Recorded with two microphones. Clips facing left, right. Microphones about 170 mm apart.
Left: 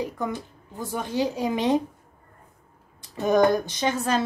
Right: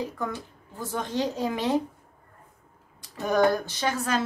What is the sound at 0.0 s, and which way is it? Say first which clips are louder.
A woman's voice: left 3 dB; 15° left (ahead or behind).